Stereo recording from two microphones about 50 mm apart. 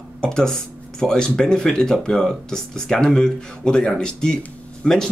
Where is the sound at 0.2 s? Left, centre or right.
Centre.